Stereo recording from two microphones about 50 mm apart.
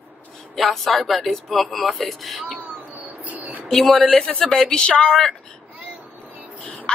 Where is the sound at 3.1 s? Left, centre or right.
Right.